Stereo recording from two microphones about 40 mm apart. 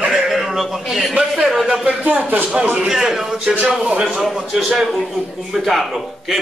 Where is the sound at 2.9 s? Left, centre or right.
Centre.